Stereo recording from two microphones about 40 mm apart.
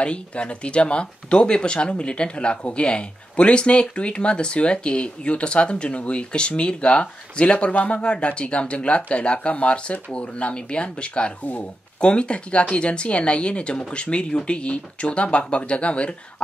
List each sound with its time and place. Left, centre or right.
0.0 s speech: left